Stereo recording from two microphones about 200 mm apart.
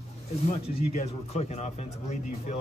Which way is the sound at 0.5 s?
30° left (ahead or behind).